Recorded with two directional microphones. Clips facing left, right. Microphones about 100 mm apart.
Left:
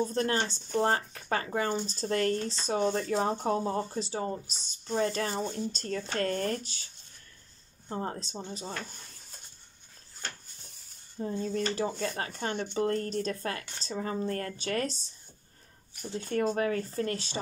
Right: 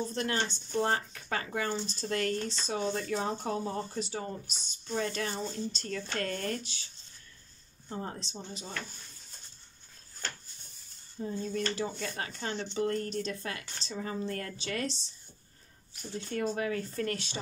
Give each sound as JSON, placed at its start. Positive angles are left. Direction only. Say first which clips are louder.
{"t": 0.1, "sound": "speech", "louder": "left 3 dB", "side_deg": 35}
{"t": 7.9, "sound": "speech", "louder": "left 4 dB", "side_deg": 35}
{"t": 11.2, "sound": "speech", "louder": "left 2 dB", "side_deg": 35}
{"t": 12.7, "sound": "speech", "louder": "left 2 dB", "side_deg": 35}